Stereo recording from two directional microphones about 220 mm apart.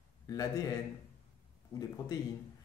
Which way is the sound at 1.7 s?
15° left (ahead or behind).